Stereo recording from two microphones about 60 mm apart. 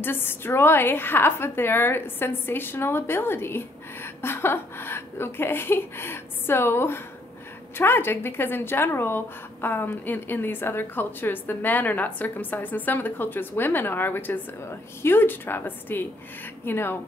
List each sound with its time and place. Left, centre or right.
0.0 s a woman's voice: left